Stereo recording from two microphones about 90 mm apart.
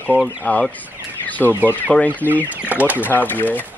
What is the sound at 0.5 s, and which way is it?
Speech, 20° left (ahead or behind).